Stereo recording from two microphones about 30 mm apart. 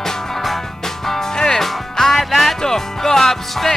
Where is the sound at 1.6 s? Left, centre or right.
Centre.